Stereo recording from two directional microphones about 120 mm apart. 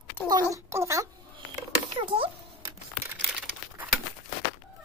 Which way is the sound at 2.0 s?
50° right (ahead or behind).